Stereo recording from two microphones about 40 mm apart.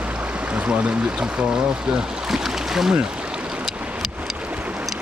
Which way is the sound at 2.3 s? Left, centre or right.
Centre.